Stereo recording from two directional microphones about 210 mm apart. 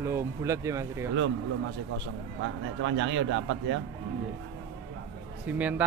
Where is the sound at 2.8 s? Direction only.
60° right (ahead or behind).